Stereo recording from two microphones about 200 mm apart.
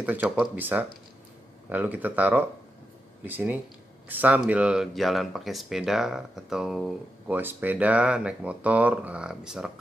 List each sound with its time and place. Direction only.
0.0 s speech: 5° right (ahead or behind)